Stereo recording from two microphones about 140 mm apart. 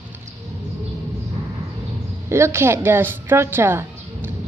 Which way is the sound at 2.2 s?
20° right (ahead or behind).